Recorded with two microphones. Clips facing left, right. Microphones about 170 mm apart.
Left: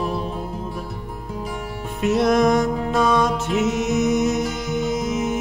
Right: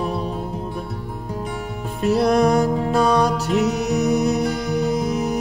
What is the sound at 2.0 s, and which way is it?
Music, 35° right (ahead or behind).